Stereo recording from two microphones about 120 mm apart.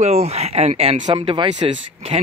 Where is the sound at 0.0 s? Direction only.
60° right (ahead or behind).